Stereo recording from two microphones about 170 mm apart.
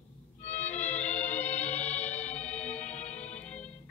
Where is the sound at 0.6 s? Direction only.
10° left (ahead or behind).